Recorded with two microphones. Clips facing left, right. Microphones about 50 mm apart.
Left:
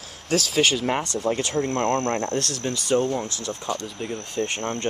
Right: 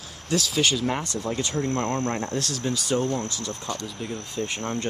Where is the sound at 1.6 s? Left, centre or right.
Left.